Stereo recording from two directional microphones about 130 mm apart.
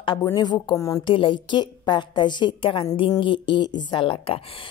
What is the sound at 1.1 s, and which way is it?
A woman's voice, 40° left (ahead or behind).